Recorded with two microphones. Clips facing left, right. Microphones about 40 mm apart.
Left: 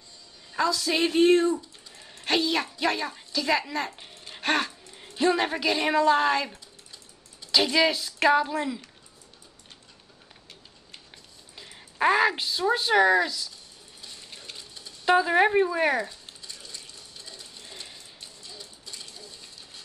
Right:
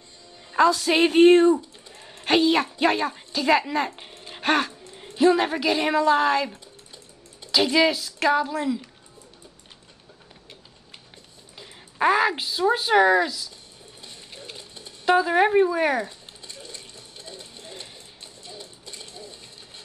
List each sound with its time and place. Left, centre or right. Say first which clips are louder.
0.7 s speech: right 3 dB; right
2.0 s a sound: right 5 dB; centre
2.7 s speech: right 5 dB; right
4.2 s dog: right 4 dB; centre
5.1 s a woman's voice: right 5 dB; centre
11.5 s speech: right 2 dB; centre
14.3 s sewing machine: right 4 dB; centre
14.6 s a sound: right 2 dB; right
15.0 s a woman's voice: right 2 dB; centre
16.6 s sewing machine: right 2 dB; right
18.4 s a sound: right 6 dB; right